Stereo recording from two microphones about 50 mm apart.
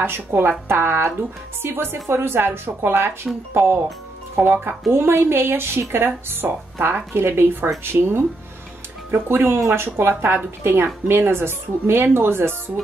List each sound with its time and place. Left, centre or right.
0.0 s a woman's voice: right